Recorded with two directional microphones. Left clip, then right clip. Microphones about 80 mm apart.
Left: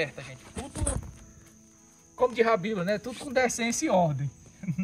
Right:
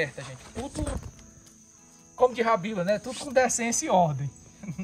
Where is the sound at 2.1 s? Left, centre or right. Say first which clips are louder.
Right 1 dB; right.